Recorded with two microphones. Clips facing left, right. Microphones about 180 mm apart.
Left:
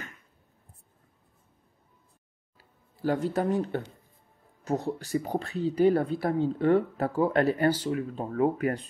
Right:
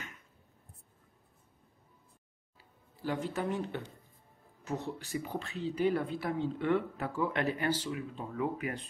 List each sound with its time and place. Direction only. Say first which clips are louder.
3.0 s speech: left 7 dB; 45° left (ahead or behind)